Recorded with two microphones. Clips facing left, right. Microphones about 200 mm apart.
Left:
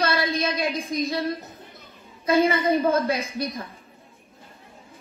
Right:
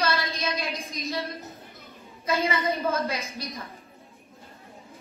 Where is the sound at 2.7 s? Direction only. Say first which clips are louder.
Left 6 dB; 55° left (ahead or behind).